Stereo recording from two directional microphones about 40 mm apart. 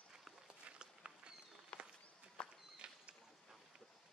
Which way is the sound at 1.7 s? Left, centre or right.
Left.